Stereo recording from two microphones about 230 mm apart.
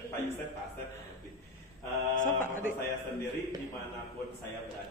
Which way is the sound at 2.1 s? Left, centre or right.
Left.